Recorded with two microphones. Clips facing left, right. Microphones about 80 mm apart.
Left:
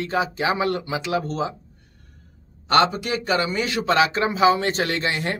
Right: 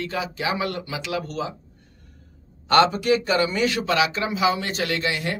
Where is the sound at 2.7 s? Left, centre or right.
Left.